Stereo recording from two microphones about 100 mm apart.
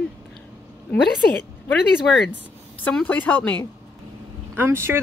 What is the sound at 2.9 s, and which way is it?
Speech, 15° left (ahead or behind).